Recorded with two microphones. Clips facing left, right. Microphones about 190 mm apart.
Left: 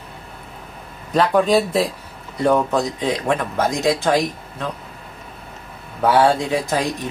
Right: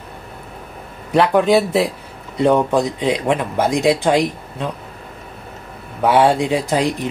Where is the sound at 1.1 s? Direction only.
10° right (ahead or behind).